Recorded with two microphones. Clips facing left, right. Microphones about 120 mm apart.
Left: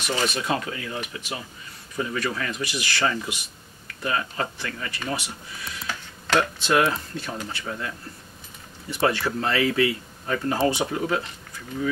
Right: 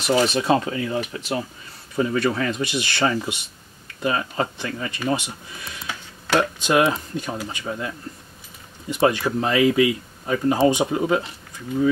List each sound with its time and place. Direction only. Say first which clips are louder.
0.0 s speech: right 7 dB; 30° right (ahead or behind)
5.9 s a sound: right 2 dB; 10° right (ahead or behind)
7.2 s speech: right 4 dB; 15° right (ahead or behind)